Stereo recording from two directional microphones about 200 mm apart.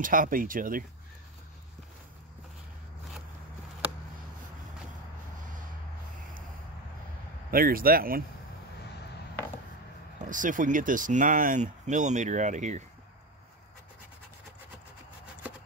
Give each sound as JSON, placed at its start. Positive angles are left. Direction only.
{"t": 0.0, "sound": "speech", "side_deg": -45}
{"t": 7.5, "sound": "speech", "side_deg": -45}
{"t": 10.3, "sound": "speech", "side_deg": -40}